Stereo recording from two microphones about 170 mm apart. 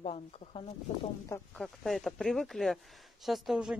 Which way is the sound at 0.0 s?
40° left (ahead or behind).